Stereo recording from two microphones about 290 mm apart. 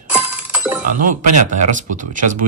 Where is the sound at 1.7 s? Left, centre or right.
Right.